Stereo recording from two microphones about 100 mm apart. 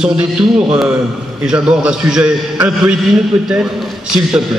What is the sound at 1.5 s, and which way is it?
A man's voice, 10° right (ahead or behind).